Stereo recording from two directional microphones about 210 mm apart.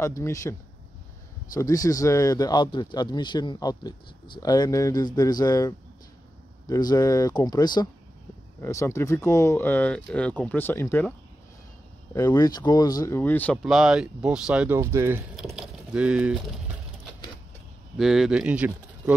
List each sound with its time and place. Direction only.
0.0 s speech: 15° left (ahead or behind); by 16.3 s 5° right (ahead or behind)
17.9 s speech: centre (ahead or behind)